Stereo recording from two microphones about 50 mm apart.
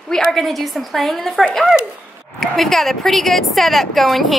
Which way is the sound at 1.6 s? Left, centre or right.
Centre.